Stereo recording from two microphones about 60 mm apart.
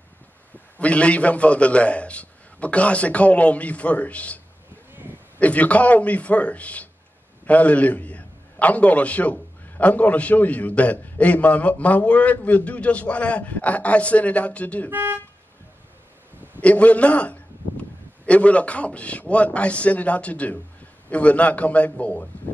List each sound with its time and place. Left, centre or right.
0.7 s a man's voice: left
5.4 s a man's voice: left
14.9 s speech: right
16.6 s a man's voice: left